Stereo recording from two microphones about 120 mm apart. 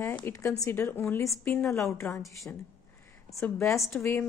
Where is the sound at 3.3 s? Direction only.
25° left (ahead or behind).